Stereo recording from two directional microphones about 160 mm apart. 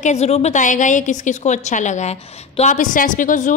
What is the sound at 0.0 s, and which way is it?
A woman's voice, 45° left (ahead or behind).